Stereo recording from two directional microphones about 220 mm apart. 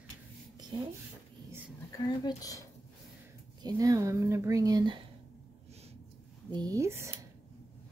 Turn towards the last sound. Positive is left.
turn(degrees=-10)  # may be behind; listen again after turning